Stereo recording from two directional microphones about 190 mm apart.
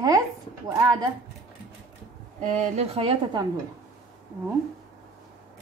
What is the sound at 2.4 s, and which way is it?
Speech, 35° right (ahead or behind).